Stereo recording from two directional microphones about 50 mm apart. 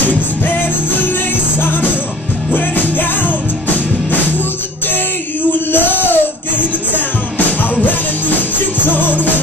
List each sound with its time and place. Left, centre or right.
1.6 s music: left
5.5 s music: left